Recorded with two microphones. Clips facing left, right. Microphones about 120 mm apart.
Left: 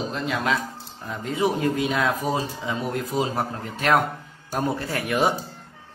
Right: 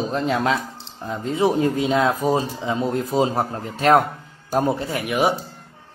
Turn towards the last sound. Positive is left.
turn(degrees=-15)  # may be behind; listen again after turning